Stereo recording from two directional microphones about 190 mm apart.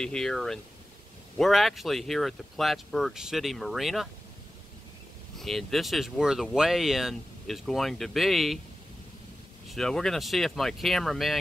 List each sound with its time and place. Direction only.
0.0 s speech: 5° left (ahead or behind)
5.4 s speech: centre (ahead or behind)
9.7 s speech: centre (ahead or behind)